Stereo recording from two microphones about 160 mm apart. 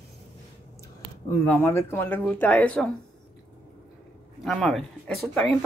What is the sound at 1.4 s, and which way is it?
Speech, 10° left (ahead or behind).